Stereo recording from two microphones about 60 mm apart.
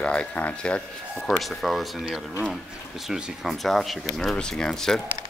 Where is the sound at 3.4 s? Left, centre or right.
Centre.